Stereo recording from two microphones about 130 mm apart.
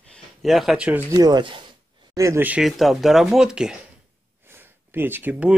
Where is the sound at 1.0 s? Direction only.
30° right (ahead or behind).